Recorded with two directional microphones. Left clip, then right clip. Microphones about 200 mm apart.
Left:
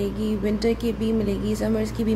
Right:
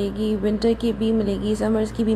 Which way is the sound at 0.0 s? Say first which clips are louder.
Right 3 dB; 10° right (ahead or behind).